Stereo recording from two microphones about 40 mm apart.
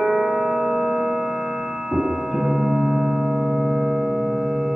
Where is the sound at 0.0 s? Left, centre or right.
Centre.